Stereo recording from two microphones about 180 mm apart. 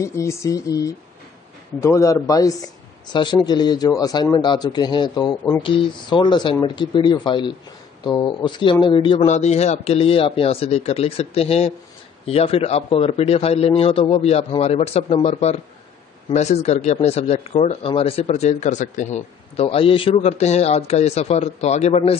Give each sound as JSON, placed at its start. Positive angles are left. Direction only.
{"t": 0.0, "sound": "speech", "side_deg": 15}